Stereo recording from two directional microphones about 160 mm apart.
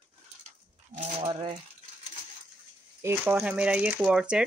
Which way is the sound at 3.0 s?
15° right (ahead or behind).